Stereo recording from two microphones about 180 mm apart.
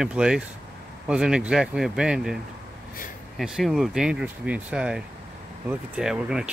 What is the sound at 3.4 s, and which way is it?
Speech, centre (ahead or behind).